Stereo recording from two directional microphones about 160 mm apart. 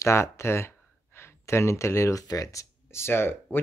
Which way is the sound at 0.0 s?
15° left (ahead or behind).